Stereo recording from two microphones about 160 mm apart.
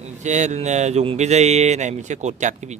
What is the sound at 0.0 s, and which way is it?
Speech, 45° right (ahead or behind).